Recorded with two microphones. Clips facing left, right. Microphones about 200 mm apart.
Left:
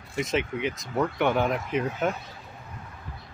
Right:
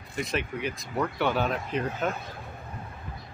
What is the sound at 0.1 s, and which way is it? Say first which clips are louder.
Speech: left 3 dB; 20° left (ahead or behind).